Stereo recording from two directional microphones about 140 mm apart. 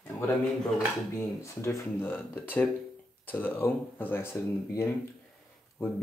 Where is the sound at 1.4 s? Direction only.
20° left (ahead or behind).